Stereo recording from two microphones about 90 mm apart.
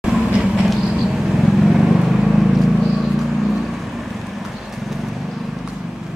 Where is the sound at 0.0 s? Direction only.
10° right (ahead or behind).